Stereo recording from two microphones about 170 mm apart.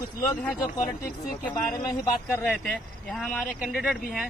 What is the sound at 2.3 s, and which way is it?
Speech, 10° left (ahead or behind).